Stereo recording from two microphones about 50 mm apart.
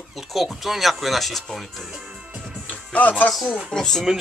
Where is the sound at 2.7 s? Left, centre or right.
Left.